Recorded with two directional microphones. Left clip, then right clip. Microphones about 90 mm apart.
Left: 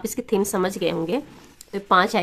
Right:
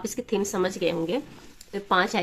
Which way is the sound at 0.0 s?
55° left (ahead or behind).